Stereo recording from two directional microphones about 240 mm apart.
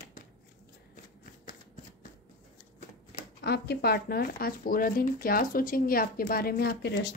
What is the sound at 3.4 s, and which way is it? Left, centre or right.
Speech, left.